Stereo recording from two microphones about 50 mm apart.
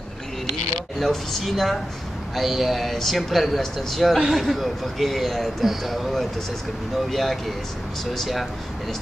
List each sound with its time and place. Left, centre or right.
0.9 s a man's voice: centre